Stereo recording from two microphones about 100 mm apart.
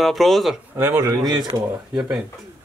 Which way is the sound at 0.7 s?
25° right (ahead or behind).